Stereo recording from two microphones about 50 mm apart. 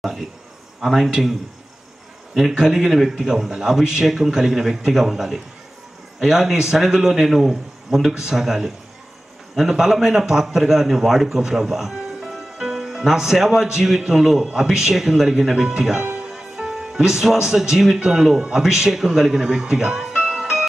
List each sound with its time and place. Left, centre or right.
0.0 s a man's voice: centre
2.5 s a man's voice: centre
8.1 s a man's voice: centre
16.0 s music: right
17.0 s a man's voice: centre
17.9 s a man's voice: centre